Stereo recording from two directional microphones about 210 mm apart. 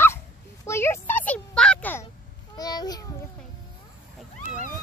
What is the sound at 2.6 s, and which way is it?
Speech, 20° left (ahead or behind).